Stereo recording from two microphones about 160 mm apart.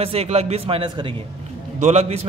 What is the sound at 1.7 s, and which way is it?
Speech, 45° right (ahead or behind).